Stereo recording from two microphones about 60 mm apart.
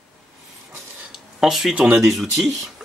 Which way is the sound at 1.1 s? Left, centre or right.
Centre.